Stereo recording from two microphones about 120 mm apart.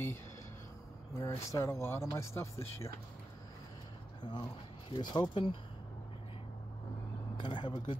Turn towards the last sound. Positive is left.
turn(degrees=40)  # may be behind; listen again after turning